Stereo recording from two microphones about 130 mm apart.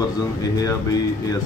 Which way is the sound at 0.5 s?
30° left (ahead or behind).